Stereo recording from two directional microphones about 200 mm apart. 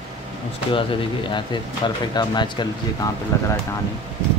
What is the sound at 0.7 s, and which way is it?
Speech, 25° left (ahead or behind).